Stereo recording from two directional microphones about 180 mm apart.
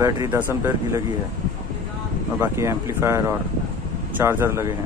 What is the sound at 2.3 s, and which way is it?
Speech, 15° right (ahead or behind).